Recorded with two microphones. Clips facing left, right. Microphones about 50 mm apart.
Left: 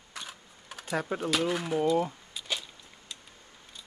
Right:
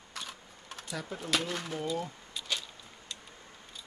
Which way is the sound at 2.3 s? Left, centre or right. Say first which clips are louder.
Left 1 dB; centre.